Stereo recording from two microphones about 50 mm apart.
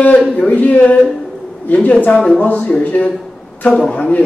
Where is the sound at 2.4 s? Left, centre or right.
Left.